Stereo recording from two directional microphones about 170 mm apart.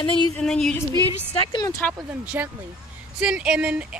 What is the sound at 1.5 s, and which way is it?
Speech, 20° left (ahead or behind).